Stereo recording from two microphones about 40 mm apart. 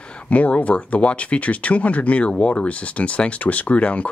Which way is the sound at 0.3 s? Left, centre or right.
Left.